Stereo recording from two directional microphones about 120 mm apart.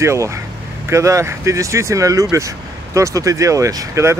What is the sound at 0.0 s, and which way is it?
Speech, 25° right (ahead or behind).